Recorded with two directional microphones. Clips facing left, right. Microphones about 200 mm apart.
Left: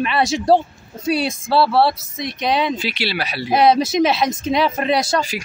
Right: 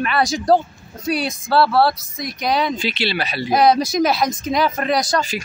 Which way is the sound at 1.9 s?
25° left (ahead or behind).